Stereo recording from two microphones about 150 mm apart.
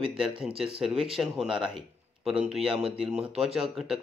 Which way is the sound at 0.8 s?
Centre (ahead or behind).